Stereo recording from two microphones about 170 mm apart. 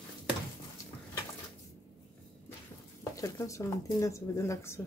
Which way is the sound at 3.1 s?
20° left (ahead or behind).